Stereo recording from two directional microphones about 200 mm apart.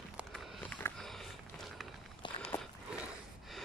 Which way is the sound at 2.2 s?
25° left (ahead or behind).